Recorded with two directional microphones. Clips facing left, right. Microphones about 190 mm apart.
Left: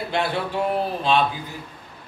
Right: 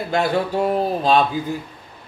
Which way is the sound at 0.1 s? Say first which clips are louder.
Right 6 dB; 45° right (ahead or behind).